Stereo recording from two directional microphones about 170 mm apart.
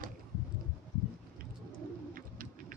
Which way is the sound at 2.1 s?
55° right (ahead or behind).